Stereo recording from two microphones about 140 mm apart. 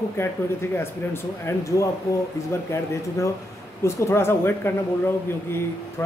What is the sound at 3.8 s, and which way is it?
Speech, 20° left (ahead or behind).